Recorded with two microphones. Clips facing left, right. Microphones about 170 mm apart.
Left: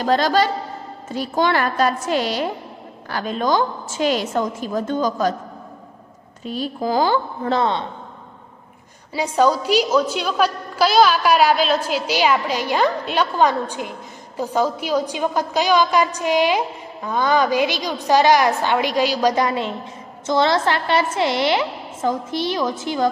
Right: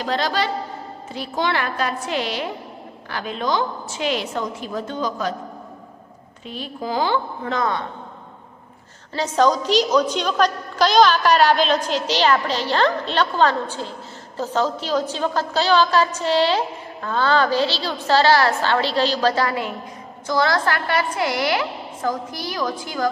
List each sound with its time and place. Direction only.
0.0 s a woman's voice: 45° left (ahead or behind)
6.4 s a woman's voice: 40° left (ahead or behind)
9.1 s a woman's voice: 10° left (ahead or behind)